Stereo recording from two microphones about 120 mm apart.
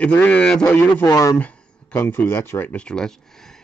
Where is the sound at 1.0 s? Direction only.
30° left (ahead or behind).